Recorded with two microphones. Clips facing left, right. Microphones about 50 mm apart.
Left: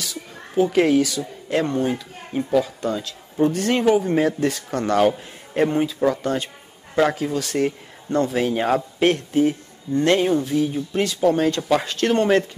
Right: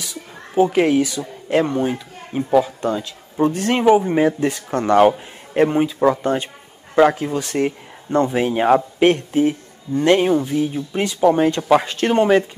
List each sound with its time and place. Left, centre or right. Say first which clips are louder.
0.0 s speech: even; centre